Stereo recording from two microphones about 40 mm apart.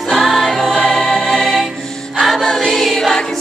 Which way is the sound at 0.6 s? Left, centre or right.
Centre.